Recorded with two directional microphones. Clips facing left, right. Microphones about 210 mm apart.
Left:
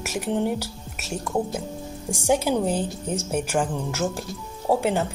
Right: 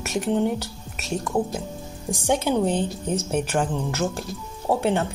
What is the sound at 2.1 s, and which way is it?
Speech, 10° left (ahead or behind).